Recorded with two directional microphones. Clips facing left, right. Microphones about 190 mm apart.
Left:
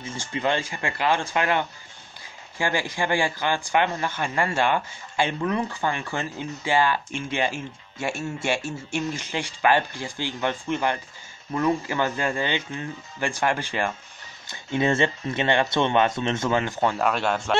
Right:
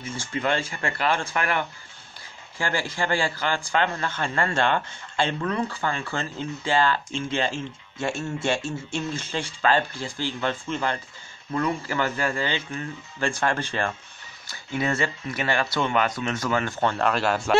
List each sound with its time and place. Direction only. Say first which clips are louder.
0.0 s speech: left 1 dB; 20° left (ahead or behind)
16.8 s speech: right 2 dB; centre (ahead or behind)